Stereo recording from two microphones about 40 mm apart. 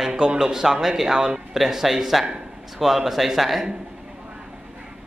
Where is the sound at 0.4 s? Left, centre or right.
Centre.